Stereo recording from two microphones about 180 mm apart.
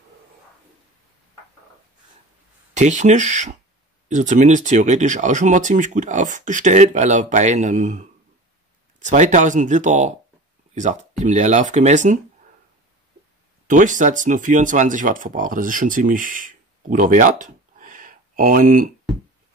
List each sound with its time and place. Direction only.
2.7 s speech: 40° right (ahead or behind)
13.7 s speech: 45° right (ahead or behind)